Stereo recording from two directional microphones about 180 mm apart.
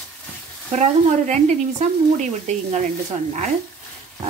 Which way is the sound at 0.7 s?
40° right (ahead or behind).